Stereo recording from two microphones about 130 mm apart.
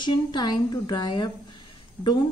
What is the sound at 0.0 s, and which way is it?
A woman's voice, 35° left (ahead or behind).